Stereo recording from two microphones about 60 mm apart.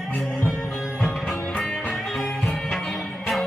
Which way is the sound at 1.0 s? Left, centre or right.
Centre.